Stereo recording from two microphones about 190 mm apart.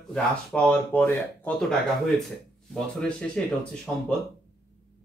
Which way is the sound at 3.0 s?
5° left (ahead or behind).